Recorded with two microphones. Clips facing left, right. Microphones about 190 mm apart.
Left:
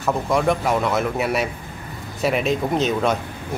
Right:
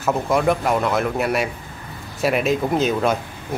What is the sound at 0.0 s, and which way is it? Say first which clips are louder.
Speech: right 1 dB; centre (ahead or behind).